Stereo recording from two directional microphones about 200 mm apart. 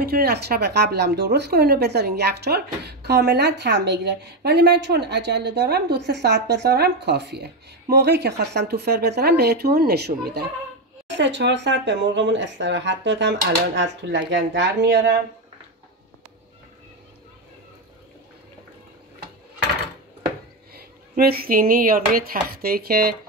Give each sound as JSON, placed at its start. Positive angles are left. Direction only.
{"t": 0.0, "sound": "a woman's voice", "side_deg": -50}
{"t": 20.7, "sound": "speech", "side_deg": -50}